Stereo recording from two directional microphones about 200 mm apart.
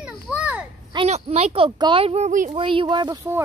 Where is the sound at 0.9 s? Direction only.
30° right (ahead or behind).